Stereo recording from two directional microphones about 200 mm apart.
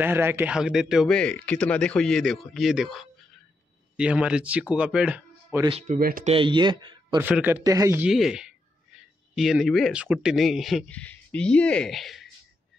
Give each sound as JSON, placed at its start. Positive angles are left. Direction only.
{"t": 0.0, "sound": "speech", "side_deg": -10}
{"t": 5.7, "sound": "speech", "side_deg": -30}
{"t": 5.9, "sound": "speech", "side_deg": -45}
{"t": 6.3, "sound": "a man's voice", "side_deg": -25}
{"t": 7.2, "sound": "a man's voice", "side_deg": -10}